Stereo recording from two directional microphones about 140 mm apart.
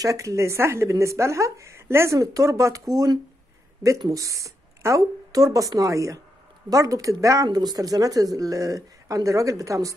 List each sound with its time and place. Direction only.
0.0 s speech: 25° right (ahead or behind)